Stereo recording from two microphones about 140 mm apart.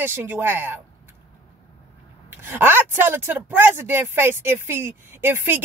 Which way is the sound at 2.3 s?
15° right (ahead or behind).